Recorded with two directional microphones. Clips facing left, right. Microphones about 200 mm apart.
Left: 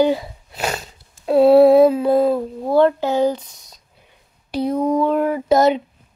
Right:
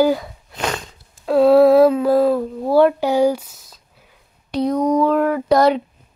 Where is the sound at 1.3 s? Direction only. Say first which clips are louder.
Left 1 dB; 25° left (ahead or behind).